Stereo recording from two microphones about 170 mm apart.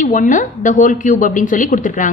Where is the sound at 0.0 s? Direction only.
50° left (ahead or behind).